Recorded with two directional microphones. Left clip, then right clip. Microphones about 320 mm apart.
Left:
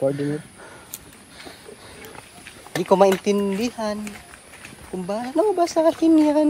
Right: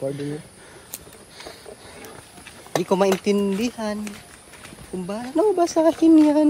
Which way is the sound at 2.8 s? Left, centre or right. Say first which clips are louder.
Left 4 dB; centre.